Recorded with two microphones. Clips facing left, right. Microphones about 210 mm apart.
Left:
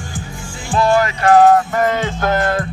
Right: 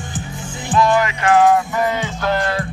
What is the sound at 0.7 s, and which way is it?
Music, 35° left (ahead or behind).